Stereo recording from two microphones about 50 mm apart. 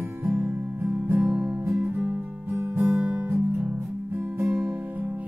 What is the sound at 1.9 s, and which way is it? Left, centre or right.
Music, right.